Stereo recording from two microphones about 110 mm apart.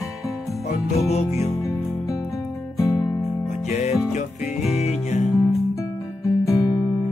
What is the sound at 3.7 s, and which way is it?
Music, 85° left.